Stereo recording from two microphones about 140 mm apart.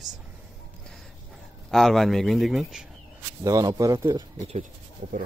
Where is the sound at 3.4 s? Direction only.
25° right (ahead or behind).